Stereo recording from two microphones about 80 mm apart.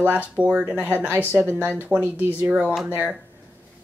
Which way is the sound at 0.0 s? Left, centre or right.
Right.